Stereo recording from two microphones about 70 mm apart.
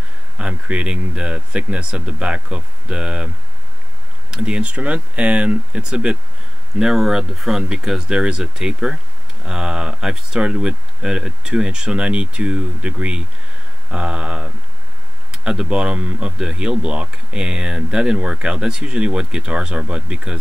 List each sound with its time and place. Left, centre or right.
0.4 s speech: centre
4.3 s speech: centre